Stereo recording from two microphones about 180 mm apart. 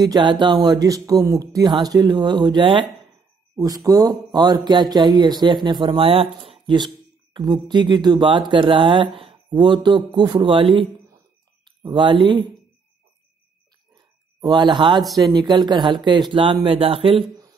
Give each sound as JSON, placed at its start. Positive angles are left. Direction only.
{"t": 0.0, "sound": "speech", "side_deg": -25}
{"t": 14.4, "sound": "speech", "side_deg": -25}